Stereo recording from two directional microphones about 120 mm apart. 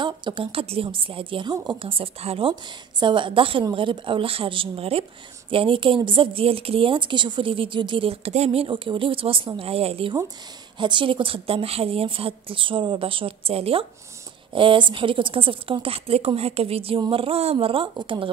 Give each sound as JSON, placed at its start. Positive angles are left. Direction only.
{"t": 0.0, "sound": "speech", "side_deg": -45}
{"t": 1.8, "sound": "a woman's voice", "side_deg": -50}
{"t": 10.8, "sound": "speech", "side_deg": -40}